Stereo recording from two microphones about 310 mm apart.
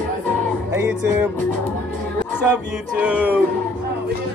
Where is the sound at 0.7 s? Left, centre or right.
Centre.